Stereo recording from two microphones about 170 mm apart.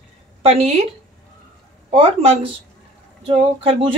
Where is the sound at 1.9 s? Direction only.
35° right (ahead or behind).